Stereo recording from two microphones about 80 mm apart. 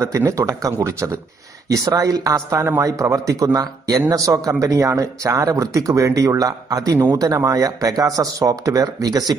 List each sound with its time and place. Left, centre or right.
0.0 s speech: right